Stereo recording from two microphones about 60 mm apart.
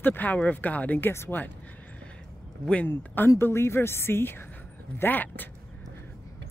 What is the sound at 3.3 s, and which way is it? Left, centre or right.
Speech, left.